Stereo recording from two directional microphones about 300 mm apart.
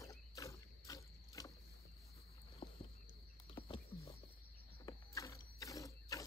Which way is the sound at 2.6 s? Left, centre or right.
Centre.